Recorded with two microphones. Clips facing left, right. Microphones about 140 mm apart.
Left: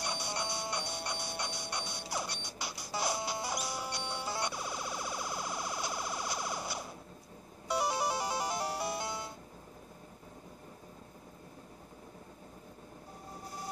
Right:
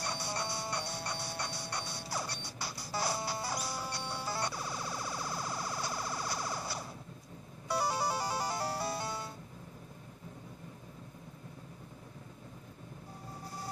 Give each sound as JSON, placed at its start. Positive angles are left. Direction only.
{"t": 0.0, "sound": "music", "side_deg": 15}